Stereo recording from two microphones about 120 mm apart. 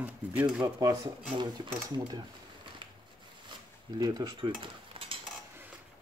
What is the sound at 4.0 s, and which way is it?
Stir, 35° right (ahead or behind).